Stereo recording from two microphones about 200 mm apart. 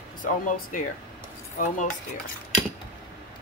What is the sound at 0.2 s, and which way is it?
Speech, 45° left (ahead or behind).